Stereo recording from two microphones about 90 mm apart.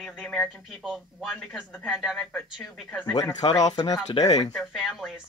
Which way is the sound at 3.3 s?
45° left (ahead or behind).